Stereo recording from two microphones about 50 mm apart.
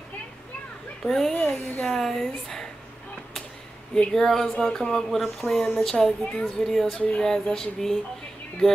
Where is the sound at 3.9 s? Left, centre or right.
Centre.